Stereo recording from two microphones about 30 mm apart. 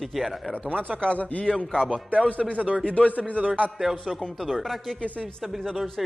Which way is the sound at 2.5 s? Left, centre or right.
Right.